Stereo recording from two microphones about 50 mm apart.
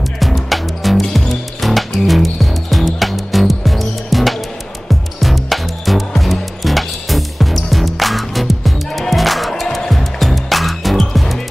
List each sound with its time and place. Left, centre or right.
0.2 s music: centre